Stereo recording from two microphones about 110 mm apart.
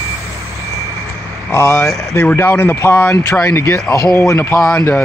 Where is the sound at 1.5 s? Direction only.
25° left (ahead or behind).